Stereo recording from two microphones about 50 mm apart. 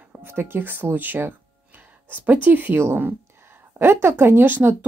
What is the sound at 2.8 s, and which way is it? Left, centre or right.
A woman's voice, right.